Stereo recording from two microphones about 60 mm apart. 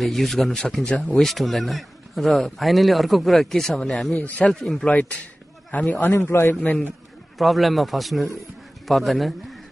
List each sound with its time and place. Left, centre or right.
0.0 s speech: centre
4.1 s speech: left
4.5 s speech: centre
4.8 s speech: left
6.1 s a man's voice: left
6.6 s speech: left
7.3 s a man's voice: centre